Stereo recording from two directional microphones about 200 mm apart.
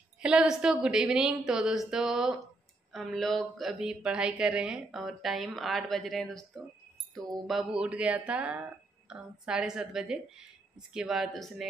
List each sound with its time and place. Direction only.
0.2 s speech: 5° right (ahead or behind)